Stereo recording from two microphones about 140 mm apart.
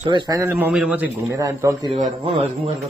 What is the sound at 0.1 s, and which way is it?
Speech, 35° right (ahead or behind).